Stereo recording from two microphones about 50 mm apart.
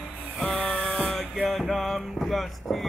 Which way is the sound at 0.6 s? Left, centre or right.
Left.